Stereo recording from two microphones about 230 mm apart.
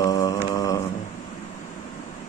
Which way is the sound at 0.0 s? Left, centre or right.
Centre.